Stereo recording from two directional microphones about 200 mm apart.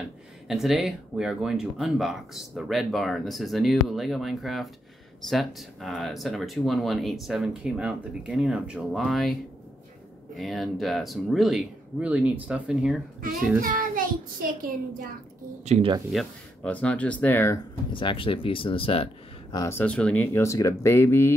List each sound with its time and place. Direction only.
0.5 s speech: centre (ahead or behind)
10.3 s speech: centre (ahead or behind)
13.6 s child singing: 45° right (ahead or behind)
15.6 s speech: 35° right (ahead or behind)
16.1 s speech: 5° left (ahead or behind)
17.9 s speech: 25° left (ahead or behind)
19.5 s speech: 15° left (ahead or behind)